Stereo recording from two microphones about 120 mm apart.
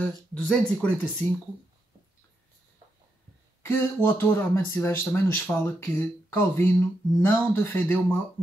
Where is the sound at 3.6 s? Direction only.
20° left (ahead or behind).